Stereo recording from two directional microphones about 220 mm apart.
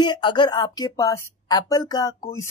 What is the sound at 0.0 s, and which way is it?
Speech, 20° left (ahead or behind).